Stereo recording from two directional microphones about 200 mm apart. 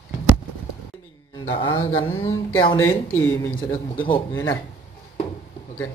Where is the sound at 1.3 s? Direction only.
25° left (ahead or behind).